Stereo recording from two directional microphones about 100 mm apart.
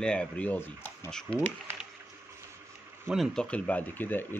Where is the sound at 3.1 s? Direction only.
Centre (ahead or behind).